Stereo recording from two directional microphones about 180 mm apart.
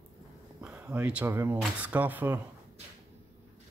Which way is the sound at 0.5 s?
10° right (ahead or behind).